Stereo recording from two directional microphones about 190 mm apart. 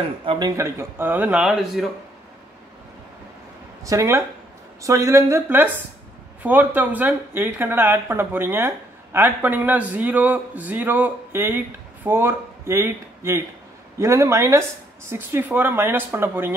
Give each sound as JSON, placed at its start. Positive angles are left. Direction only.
{"t": 0.2, "sound": "speech", "side_deg": -25}
{"t": 3.8, "sound": "speech", "side_deg": -15}